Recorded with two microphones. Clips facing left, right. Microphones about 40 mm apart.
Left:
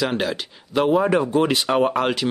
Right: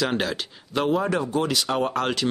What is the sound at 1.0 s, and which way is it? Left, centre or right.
Speech, left.